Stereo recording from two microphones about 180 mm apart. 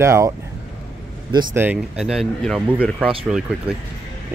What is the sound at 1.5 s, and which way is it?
Speech, 10° right (ahead or behind).